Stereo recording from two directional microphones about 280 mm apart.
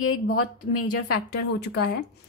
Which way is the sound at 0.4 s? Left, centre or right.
Left.